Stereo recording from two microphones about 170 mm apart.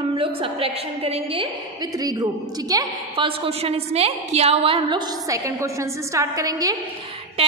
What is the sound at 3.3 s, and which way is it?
A woman's voice, 35° right (ahead or behind).